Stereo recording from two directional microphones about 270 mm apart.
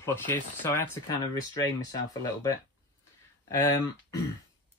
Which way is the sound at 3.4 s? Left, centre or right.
Centre.